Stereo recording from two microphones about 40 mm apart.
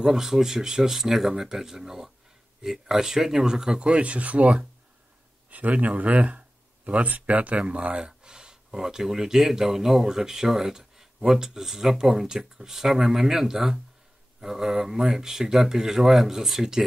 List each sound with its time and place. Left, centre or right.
0.0 s speech: centre